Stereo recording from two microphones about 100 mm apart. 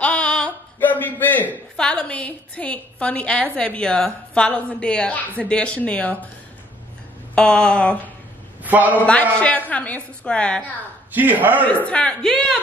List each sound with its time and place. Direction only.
0.0 s a sound: 10° left (ahead or behind)
0.7 s a sound: 20° left (ahead or behind)
1.8 s a woman's voice: 10° left (ahead or behind)
7.3 s a woman's voice: 10° left (ahead or behind)
8.6 s a man's voice: 15° right (ahead or behind)
9.0 s a woman's voice: 10° left (ahead or behind)
11.1 s a man's voice: 15° right (ahead or behind)
11.6 s a woman's voice: 15° left (ahead or behind)